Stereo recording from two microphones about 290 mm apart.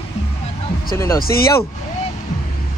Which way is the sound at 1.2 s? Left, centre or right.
Left.